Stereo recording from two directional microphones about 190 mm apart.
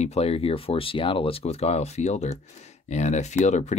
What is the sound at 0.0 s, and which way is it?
Speech, 35° left (ahead or behind).